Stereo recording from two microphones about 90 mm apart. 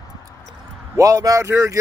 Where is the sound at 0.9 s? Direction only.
40° right (ahead or behind).